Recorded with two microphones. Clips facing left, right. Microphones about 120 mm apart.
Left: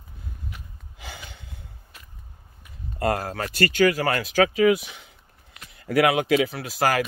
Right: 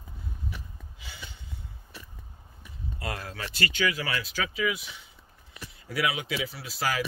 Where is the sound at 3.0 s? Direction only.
50° left (ahead or behind).